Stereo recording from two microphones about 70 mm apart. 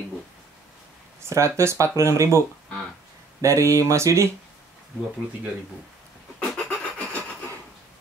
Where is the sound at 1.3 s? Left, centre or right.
Right.